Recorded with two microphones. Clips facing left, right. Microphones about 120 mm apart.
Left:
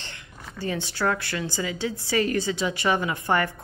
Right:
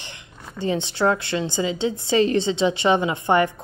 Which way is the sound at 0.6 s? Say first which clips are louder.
Right 6 dB; 20° right (ahead or behind).